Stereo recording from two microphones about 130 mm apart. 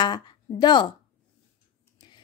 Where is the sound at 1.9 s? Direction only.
35° left (ahead or behind).